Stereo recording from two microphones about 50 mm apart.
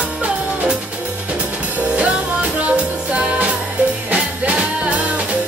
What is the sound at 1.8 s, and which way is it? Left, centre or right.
Music, right.